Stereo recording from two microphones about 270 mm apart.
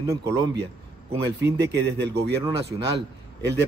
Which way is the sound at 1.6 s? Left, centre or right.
Right.